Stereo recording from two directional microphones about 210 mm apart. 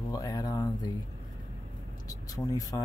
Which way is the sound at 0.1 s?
20° left (ahead or behind).